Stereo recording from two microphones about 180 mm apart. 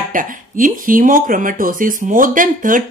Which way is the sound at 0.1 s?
50° right (ahead or behind).